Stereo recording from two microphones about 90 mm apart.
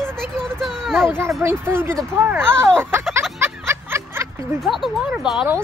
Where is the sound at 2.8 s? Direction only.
30° right (ahead or behind).